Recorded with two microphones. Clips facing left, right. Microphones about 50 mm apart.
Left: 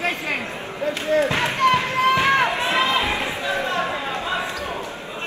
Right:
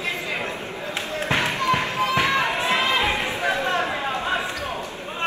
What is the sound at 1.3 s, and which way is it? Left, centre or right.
Music, left.